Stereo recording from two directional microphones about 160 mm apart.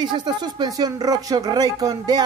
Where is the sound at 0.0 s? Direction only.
25° right (ahead or behind).